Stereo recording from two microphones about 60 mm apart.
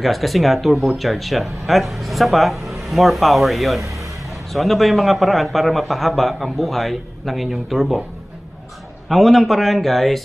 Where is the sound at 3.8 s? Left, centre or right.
Right.